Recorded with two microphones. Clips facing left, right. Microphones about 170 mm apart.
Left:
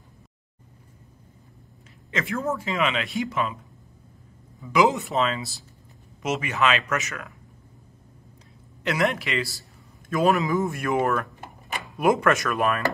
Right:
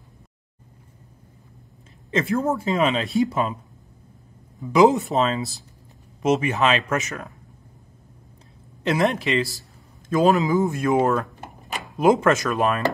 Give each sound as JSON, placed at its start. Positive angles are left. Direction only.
{"t": 2.0, "sound": "a sound", "side_deg": -35}
{"t": 2.7, "sound": "speech", "side_deg": -35}
{"t": 4.8, "sound": "speech", "side_deg": 0}
{"t": 5.1, "sound": "speech", "side_deg": -35}
{"t": 8.8, "sound": "speech", "side_deg": -25}